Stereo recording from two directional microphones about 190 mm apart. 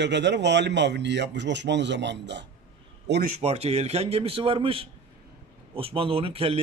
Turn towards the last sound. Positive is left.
turn(degrees=-30)  # may be behind; listen again after turning